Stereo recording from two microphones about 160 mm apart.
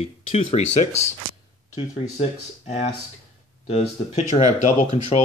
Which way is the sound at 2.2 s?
45° left (ahead or behind).